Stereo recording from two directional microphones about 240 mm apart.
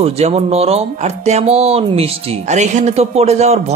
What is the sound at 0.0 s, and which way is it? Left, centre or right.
A man's voice, right.